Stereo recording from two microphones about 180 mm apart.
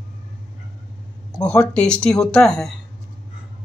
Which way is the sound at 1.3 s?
5° left (ahead or behind).